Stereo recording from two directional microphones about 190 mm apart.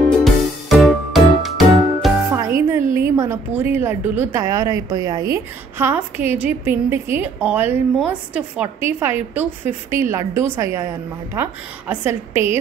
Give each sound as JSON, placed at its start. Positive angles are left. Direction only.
{"t": 0.2, "sound": "music", "side_deg": 0}
{"t": 2.3, "sound": "music", "side_deg": -15}
{"t": 3.2, "sound": "a woman's voice", "side_deg": -10}